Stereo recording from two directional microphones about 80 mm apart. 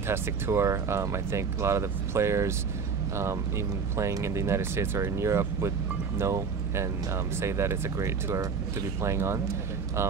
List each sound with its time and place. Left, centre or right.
0.1 s speech: right